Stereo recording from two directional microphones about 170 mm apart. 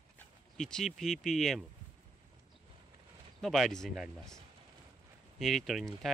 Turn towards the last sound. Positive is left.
turn(degrees=0)  # may be behind; listen again after turning